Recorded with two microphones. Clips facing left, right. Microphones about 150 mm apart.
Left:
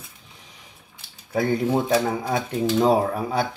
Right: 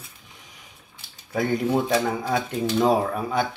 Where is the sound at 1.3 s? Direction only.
25° left (ahead or behind).